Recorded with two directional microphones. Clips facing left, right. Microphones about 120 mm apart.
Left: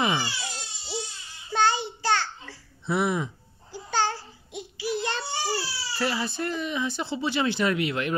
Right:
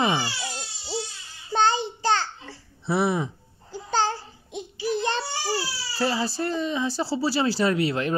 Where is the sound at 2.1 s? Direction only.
20° right (ahead or behind).